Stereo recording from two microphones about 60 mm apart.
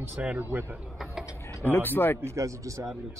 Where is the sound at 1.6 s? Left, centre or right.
Left.